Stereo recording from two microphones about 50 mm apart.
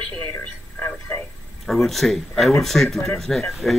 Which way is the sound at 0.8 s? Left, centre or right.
Left.